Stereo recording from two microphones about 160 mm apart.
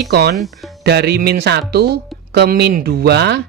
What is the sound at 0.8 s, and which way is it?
Speech, 90° right.